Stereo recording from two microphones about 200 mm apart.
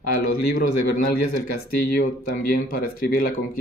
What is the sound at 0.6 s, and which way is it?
Speech, 50° left (ahead or behind).